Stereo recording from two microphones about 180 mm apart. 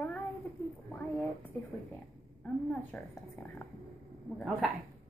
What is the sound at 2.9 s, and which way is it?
Speech, 5° left (ahead or behind).